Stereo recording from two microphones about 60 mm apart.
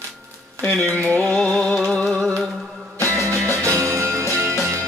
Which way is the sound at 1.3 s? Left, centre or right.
Centre.